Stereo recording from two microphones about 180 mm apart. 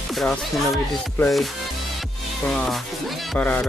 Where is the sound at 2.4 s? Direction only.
5° left (ahead or behind).